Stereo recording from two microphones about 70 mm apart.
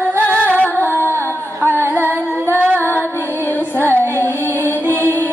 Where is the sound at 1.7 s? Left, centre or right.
Right.